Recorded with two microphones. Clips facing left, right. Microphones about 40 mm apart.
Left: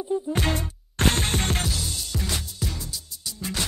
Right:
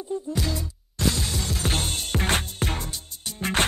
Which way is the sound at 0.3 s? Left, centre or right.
Left.